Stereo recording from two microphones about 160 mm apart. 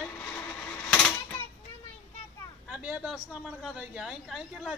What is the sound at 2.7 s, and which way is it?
Speech, 10° right (ahead or behind).